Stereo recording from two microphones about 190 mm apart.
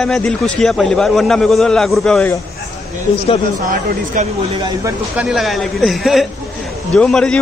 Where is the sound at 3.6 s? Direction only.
45° right (ahead or behind).